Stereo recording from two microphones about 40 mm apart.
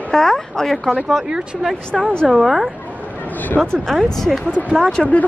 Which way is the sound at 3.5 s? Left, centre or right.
Centre.